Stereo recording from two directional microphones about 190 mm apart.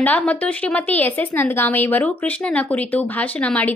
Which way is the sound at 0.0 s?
10° left (ahead or behind).